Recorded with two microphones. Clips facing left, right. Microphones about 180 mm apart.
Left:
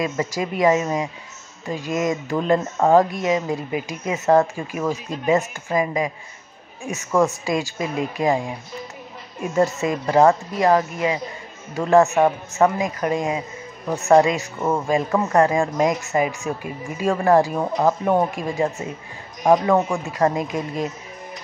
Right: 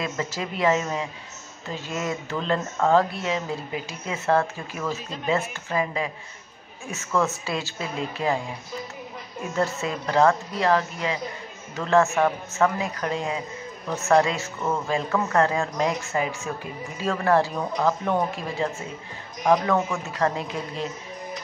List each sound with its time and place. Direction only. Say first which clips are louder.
0.0 s speech: left 5 dB; 10° left (ahead or behind)
9.8 s speech: left 2 dB; 15° left (ahead or behind)